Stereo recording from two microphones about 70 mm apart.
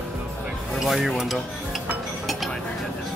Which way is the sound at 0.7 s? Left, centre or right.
Centre.